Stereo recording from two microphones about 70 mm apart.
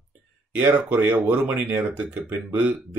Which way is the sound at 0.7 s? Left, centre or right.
Right.